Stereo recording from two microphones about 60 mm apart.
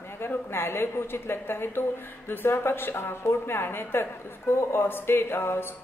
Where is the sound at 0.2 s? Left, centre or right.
Left.